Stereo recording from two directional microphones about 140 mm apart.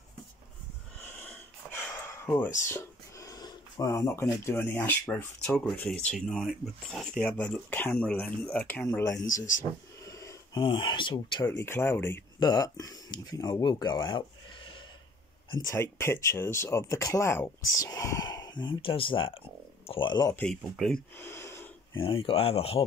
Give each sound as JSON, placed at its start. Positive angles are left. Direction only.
{"t": 2.2, "sound": "speech", "side_deg": 10}
{"t": 2.7, "sound": "speech", "side_deg": 25}
{"t": 7.2, "sound": "speech", "side_deg": 10}
{"t": 8.8, "sound": "speech", "side_deg": 25}
{"t": 10.0, "sound": "wheeze", "side_deg": 20}
{"t": 10.6, "sound": "speech", "side_deg": 35}
{"t": 11.4, "sound": "speech", "side_deg": 15}
{"t": 12.4, "sound": "speech", "side_deg": 25}
{"t": 15.5, "sound": "speech", "side_deg": 20}
{"t": 20.7, "sound": "speech", "side_deg": 0}
{"t": 21.2, "sound": "gasp", "side_deg": 20}
{"t": 22.0, "sound": "speech", "side_deg": 40}